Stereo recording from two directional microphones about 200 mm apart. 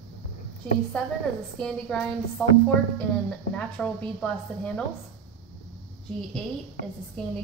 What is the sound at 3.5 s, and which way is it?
Speech, 5° left (ahead or behind).